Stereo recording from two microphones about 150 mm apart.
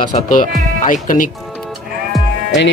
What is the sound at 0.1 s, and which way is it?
Speech, 60° left (ahead or behind).